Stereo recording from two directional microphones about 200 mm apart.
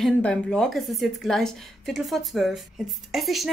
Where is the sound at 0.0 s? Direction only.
5° left (ahead or behind).